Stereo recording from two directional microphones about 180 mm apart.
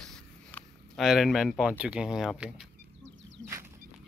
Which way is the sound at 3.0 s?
90° right.